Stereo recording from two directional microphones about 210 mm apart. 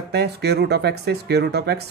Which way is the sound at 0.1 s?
50° right (ahead or behind).